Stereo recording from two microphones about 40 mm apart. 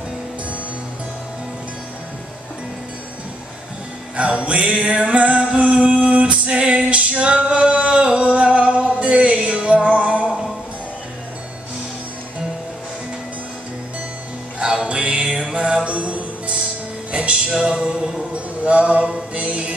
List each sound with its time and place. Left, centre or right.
4.2 s music: right
7.7 s singing: right
14.6 s music: right
17.5 s a sound: centre